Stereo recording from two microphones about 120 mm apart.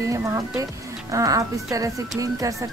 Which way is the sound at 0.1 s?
30° right (ahead or behind).